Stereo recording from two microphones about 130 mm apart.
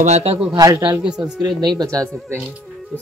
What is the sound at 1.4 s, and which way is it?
Speech, 35° right (ahead or behind).